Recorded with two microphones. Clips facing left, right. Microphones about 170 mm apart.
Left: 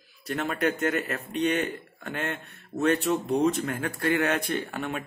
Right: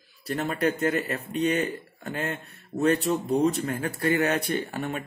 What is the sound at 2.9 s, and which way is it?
Speech, centre (ahead or behind).